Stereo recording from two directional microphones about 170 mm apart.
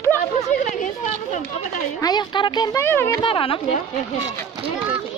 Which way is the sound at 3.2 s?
30° left (ahead or behind).